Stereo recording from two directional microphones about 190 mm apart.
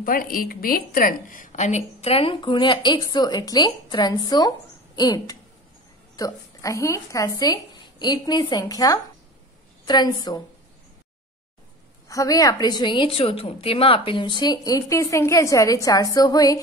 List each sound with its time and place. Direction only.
0.0 s a woman's voice: 45° left (ahead or behind); by 10.4 s 20° left (ahead or behind)
12.1 s a woman's voice: 15° left (ahead or behind)